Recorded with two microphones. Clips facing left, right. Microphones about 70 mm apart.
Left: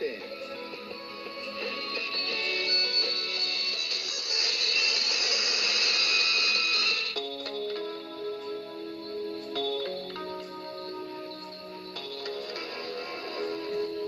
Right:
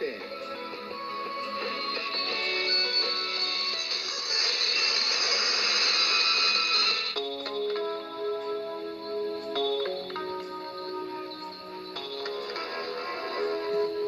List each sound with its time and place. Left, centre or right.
1.6 s music: right
9.6 s music: right
13.4 s music: right